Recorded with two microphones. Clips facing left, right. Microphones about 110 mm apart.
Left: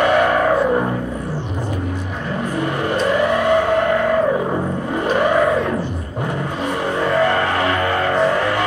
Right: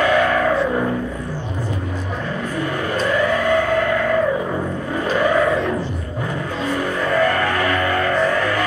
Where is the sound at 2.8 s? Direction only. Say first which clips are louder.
Left 2 dB; 25° left (ahead or behind).